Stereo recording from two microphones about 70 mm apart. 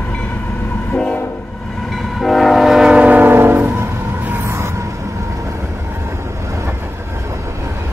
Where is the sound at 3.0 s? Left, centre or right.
Right.